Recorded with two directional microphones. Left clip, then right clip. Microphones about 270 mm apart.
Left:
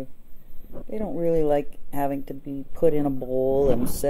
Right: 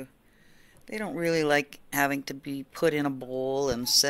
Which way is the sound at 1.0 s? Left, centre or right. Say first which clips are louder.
Left 3 dB; right.